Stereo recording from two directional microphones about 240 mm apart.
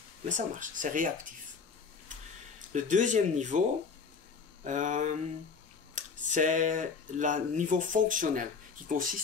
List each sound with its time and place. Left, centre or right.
0.2 s speech: right
2.7 s speech: right
4.6 s speech: right